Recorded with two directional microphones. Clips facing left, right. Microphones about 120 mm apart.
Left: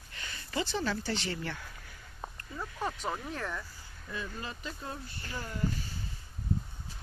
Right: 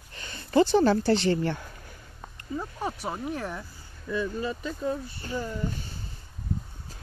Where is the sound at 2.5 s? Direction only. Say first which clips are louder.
Right 5 dB; 15° right (ahead or behind).